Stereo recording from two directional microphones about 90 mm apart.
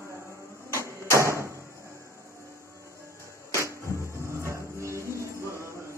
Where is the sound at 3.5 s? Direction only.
35° right (ahead or behind).